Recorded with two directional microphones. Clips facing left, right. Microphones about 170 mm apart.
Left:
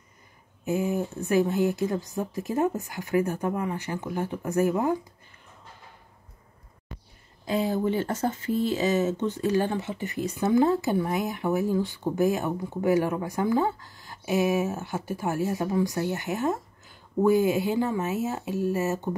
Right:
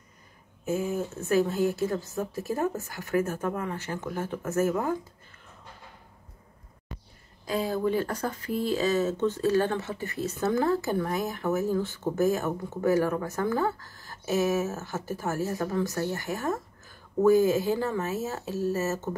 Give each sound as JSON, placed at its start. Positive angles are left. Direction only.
{"t": 0.7, "sound": "speech", "side_deg": 20}
{"t": 7.4, "sound": "speech", "side_deg": 20}